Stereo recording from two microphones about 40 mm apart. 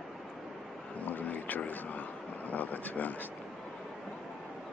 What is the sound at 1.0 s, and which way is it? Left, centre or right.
Vehicle, left.